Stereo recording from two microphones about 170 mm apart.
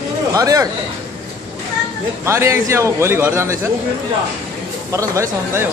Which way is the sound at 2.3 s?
15° right (ahead or behind).